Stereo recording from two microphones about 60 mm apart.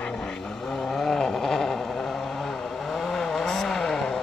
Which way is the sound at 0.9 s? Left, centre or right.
Centre.